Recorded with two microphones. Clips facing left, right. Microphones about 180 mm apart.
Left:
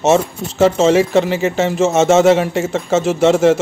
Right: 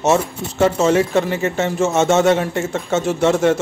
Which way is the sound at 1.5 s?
90° left.